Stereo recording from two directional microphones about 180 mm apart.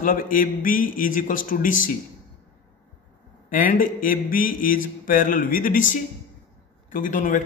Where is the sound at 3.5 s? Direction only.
50° left (ahead or behind).